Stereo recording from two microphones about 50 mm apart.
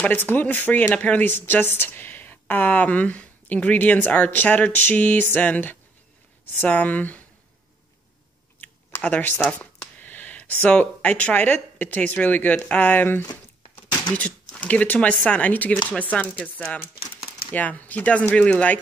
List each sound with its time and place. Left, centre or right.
0.2 s a woman's voice: left
1.2 s a woman's voice: left
9.0 s a sound: left
10.7 s a woman's voice: left
14.1 s speech: left